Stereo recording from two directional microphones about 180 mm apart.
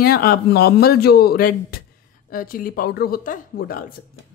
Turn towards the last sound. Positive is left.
turn(degrees=55)  # may be behind; listen again after turning